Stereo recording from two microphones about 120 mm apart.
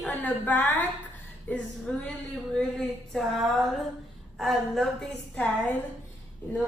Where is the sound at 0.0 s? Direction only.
10° left (ahead or behind).